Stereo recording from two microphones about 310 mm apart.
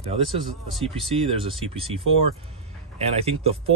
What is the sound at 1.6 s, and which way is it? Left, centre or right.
Speech, centre.